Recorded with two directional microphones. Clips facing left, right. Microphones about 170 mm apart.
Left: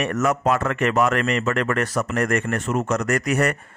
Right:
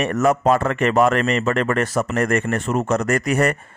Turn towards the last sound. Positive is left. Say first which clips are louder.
# right 2 dB
turn(degrees=-30)  # may be behind; listen again after turning